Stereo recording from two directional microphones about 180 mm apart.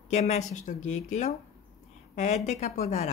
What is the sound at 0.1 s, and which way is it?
Speech, 40° left (ahead or behind).